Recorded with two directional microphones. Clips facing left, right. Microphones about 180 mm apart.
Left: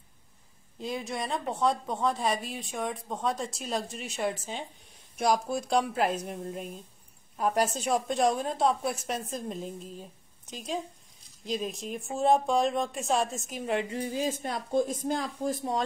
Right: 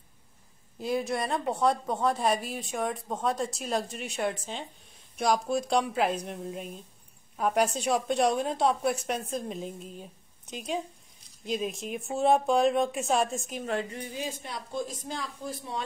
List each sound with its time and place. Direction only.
0.7 s speech: 5° right (ahead or behind)
13.8 s speech: 30° left (ahead or behind)
14.2 s speech: 45° left (ahead or behind)